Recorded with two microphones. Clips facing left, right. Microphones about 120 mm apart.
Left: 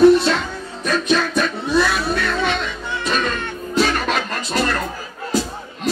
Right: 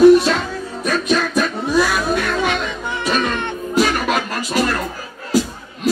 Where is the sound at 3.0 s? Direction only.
20° right (ahead or behind).